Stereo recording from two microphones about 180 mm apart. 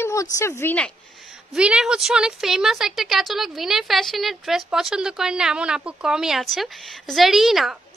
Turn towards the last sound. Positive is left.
turn(degrees=0)  # may be behind; listen again after turning